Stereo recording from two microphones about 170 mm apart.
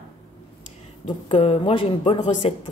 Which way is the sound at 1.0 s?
30° left (ahead or behind).